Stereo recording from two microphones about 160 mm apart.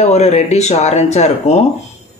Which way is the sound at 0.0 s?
45° left (ahead or behind).